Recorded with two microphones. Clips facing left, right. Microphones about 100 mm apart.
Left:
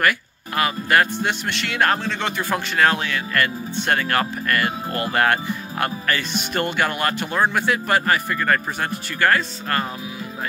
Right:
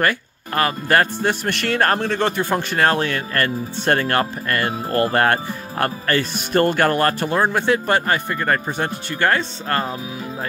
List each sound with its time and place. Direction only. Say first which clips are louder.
0.6 s speech: right 1 dB; 35° right (ahead or behind)
1.5 s speech: right 1 dB; 50° right (ahead or behind); by 9.8 s 30° right (ahead or behind)